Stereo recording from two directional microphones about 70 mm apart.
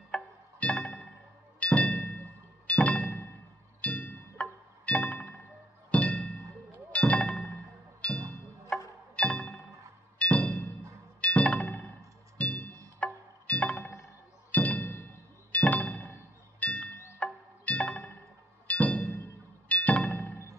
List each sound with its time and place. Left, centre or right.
0.1 s music: centre